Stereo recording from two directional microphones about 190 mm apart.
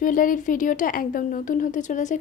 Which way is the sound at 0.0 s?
45° left (ahead or behind).